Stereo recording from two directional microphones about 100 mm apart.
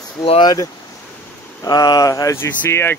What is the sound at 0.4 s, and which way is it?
Speech, 40° left (ahead or behind).